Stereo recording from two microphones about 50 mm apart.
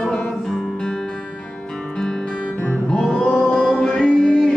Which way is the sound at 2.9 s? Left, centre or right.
Centre.